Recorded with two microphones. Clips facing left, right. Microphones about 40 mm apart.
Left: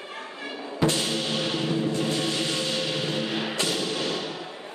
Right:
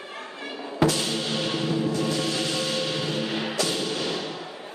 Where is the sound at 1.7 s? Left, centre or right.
Left.